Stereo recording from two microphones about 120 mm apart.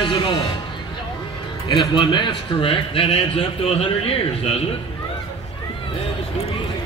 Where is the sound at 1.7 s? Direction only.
40° left (ahead or behind).